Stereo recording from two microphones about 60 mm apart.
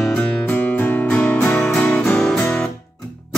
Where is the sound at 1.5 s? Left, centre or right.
Left.